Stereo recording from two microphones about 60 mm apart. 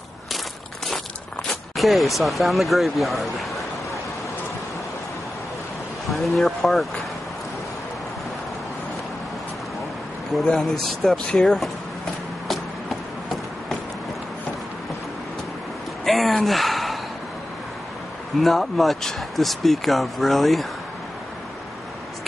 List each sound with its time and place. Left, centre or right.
1.5 s speech: centre
6.0 s speech: centre
10.6 s speech: centre
16.0 s a sound: centre
18.4 s speech: centre